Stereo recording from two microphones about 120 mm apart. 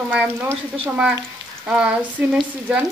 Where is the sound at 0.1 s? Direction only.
15° right (ahead or behind).